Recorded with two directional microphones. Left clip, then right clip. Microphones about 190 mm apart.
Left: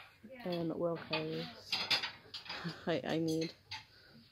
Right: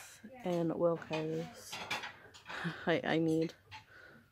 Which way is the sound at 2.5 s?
10° right (ahead or behind).